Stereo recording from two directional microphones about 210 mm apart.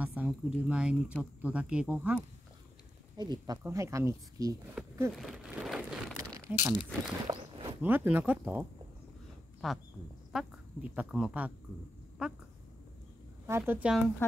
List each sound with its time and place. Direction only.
0.0 s speech: 5° right (ahead or behind)
3.2 s speech: 20° right (ahead or behind)
5.1 s speech: centre (ahead or behind)
6.3 s crumpling: 15° right (ahead or behind)
7.2 s walk: 25° right (ahead or behind)
7.8 s speech: 10° right (ahead or behind)
13.5 s speech: 10° right (ahead or behind)